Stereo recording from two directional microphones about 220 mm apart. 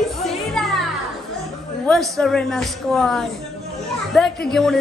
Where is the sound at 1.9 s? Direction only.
Centre (ahead or behind).